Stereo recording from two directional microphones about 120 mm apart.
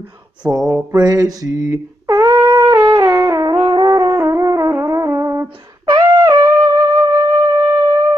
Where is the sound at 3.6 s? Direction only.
35° right (ahead or behind).